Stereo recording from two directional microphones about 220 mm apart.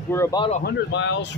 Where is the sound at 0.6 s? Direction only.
50° left (ahead or behind).